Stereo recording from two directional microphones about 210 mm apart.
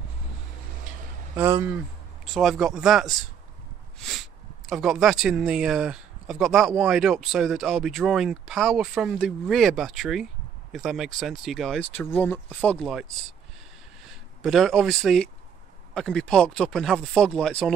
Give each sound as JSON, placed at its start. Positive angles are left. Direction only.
{"t": 1.3, "sound": "speech", "side_deg": -10}
{"t": 14.4, "sound": "speech", "side_deg": 0}